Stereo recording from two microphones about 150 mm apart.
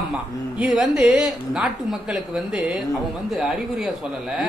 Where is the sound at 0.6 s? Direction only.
5° right (ahead or behind).